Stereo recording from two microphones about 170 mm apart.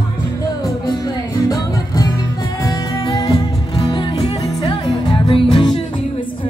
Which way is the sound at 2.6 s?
25° left (ahead or behind).